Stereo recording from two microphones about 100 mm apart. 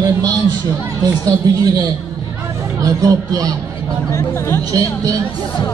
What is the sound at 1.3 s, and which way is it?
Speech, 40° right (ahead or behind).